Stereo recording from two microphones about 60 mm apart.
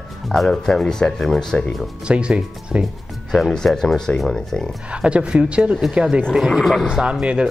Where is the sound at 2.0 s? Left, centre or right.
Centre.